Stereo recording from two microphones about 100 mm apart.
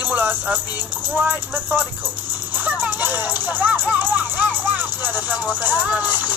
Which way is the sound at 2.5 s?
20° right (ahead or behind).